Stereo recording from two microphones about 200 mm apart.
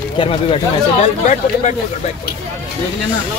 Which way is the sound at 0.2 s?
25° left (ahead or behind).